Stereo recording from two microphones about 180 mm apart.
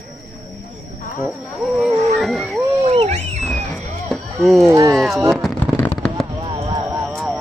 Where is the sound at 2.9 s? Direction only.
35° right (ahead or behind).